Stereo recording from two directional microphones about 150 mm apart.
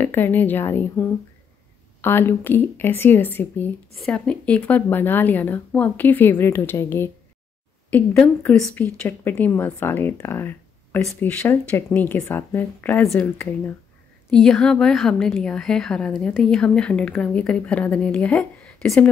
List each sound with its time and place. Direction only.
0.0 s a woman's voice: 15° left (ahead or behind)
14.3 s a woman's voice: 5° left (ahead or behind)